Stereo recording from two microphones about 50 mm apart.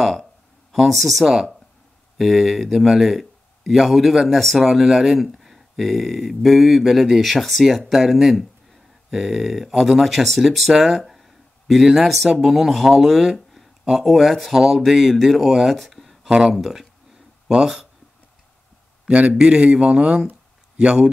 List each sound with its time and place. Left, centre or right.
0.0 s a sound: centre
2.1 s speech: centre
16.3 s speech: centre
16.5 s speech: centre
19.0 s speech: centre